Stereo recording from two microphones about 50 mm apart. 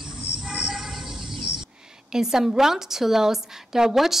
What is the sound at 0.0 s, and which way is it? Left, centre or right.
Cricket, centre.